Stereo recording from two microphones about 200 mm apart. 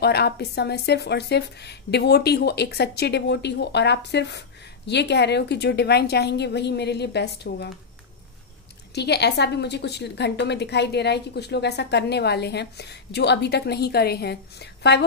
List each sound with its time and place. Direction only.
0.0 s speech: 55° left (ahead or behind)
8.9 s speech: 55° left (ahead or behind)